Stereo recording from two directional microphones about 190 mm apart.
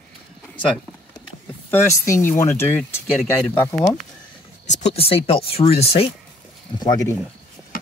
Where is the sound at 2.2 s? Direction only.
15° left (ahead or behind).